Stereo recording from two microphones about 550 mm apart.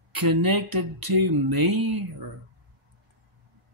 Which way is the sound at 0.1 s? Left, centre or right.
Right.